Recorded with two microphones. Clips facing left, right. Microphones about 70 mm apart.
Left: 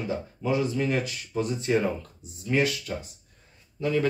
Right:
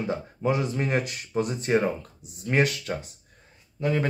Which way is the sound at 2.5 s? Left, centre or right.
Right.